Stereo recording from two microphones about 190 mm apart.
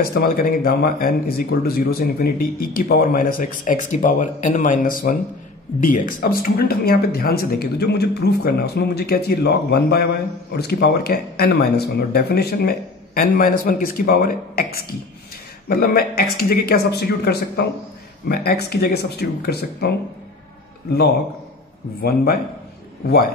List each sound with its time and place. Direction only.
0.0 s speech: 50° left (ahead or behind)
22.0 s speech: 50° left (ahead or behind)